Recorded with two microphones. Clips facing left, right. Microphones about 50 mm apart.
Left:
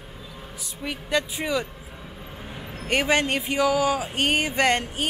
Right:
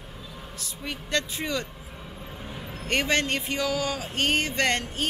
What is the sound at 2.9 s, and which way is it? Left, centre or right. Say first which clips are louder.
Speech: left 3 dB; centre.